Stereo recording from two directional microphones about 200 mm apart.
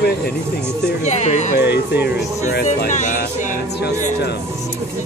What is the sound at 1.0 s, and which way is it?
Speech, 35° left (ahead or behind).